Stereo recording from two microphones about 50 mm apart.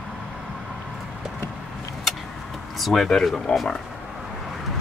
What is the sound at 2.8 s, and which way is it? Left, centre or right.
Speech, centre.